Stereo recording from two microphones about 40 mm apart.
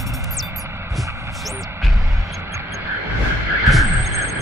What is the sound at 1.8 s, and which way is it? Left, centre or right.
Music, centre.